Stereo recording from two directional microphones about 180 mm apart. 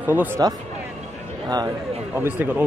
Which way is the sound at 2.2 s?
10° right (ahead or behind).